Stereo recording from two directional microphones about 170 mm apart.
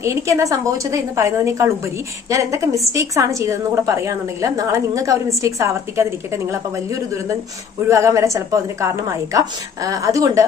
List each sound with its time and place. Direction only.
0.0 s a woman's voice: 20° right (ahead or behind)